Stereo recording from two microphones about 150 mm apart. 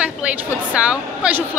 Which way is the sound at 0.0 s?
10° right (ahead or behind).